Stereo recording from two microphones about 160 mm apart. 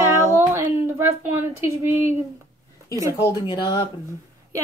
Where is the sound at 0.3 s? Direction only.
15° right (ahead or behind).